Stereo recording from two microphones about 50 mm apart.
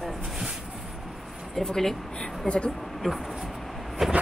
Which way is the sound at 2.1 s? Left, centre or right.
Centre.